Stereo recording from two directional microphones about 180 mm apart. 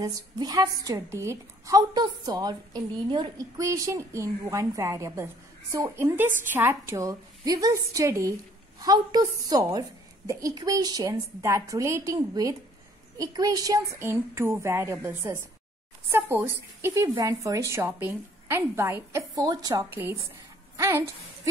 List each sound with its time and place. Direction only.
0.0 s a woman's voice: 20° right (ahead or behind)